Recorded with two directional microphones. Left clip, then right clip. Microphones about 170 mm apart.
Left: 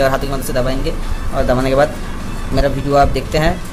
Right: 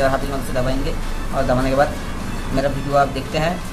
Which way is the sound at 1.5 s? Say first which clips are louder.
Left 4 dB; 45° left (ahead or behind).